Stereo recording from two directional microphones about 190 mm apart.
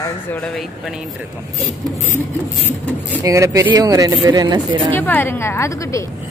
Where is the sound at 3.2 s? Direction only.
15° right (ahead or behind).